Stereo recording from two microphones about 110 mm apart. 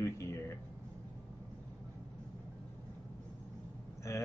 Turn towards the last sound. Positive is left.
turn(degrees=25)  # may be behind; listen again after turning